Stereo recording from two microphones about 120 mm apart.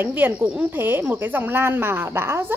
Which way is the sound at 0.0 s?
15° right (ahead or behind).